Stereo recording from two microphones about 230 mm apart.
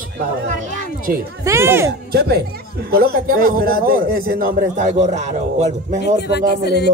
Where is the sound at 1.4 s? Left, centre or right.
Centre.